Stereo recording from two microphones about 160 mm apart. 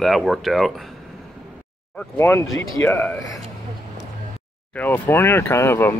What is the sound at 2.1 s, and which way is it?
Speech, 10° left (ahead or behind).